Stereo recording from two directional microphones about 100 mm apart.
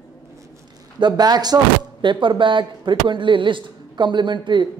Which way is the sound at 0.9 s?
45° right (ahead or behind).